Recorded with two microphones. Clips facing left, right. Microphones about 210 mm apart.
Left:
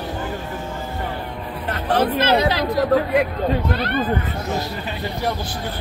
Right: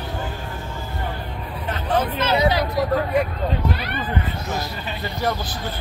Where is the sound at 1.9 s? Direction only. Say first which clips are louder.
Left 3 dB; 70° left (ahead or behind).